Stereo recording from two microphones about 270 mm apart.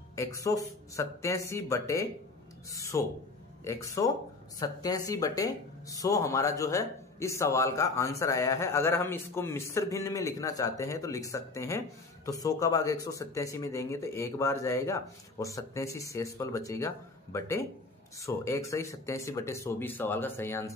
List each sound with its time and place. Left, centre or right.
0.1 s speech: centre